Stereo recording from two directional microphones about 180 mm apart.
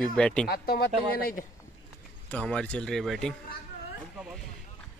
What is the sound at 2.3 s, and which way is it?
Speech, 5° left (ahead or behind).